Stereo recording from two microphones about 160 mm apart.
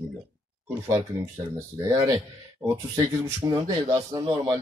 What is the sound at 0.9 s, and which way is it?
A man's voice, 20° right (ahead or behind).